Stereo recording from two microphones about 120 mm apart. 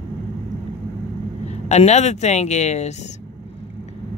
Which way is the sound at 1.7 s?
70° left (ahead or behind).